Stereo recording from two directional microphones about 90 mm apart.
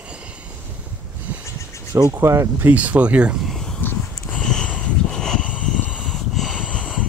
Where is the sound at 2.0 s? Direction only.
35° right (ahead or behind).